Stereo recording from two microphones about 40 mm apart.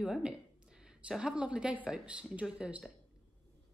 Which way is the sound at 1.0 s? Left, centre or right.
Right.